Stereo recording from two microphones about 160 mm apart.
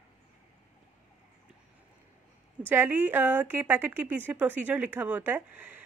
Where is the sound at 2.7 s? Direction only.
10° right (ahead or behind).